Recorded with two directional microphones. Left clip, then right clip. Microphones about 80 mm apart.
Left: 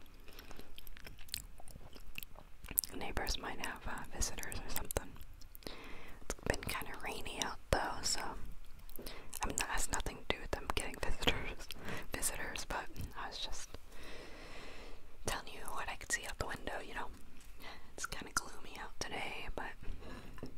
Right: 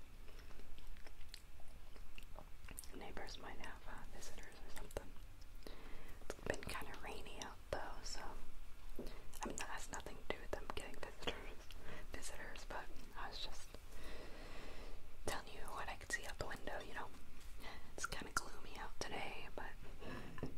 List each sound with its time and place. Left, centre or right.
2.1 s speech: left
5.6 s whispering: left
9.0 s whispering: left
20.0 s a sound: centre